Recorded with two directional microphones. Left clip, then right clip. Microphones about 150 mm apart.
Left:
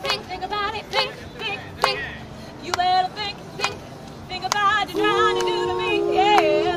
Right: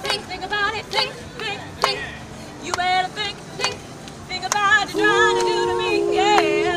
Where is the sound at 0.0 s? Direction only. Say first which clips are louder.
Even; centre (ahead or behind).